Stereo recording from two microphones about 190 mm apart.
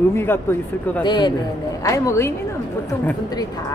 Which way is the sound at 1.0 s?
25° left (ahead or behind).